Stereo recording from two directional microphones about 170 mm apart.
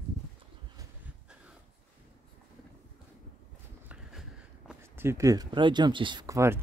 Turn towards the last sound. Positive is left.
turn(degrees=-15)  # may be behind; listen again after turning